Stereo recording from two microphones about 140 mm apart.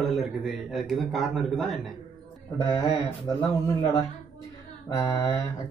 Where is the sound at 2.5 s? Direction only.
30° left (ahead or behind).